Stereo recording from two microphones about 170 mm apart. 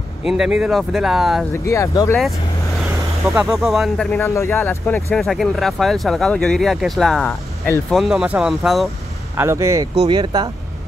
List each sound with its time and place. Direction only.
0.2 s speech: 5° right (ahead or behind)
1.7 s speech: 15° left (ahead or behind)
3.5 s speech: centre (ahead or behind)
4.2 s speech: 15° left (ahead or behind); by 8.8 s centre (ahead or behind)
9.4 s speech: 15° right (ahead or behind)
9.9 s speech: 30° right (ahead or behind)